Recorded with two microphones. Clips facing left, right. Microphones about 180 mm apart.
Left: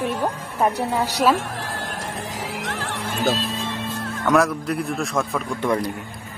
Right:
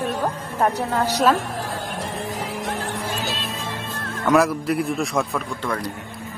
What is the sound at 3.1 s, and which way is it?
Music, 50° left (ahead or behind).